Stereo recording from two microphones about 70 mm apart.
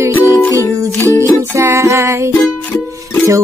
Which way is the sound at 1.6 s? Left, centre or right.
Right.